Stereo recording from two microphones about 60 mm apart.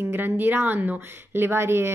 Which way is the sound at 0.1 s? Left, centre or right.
Right.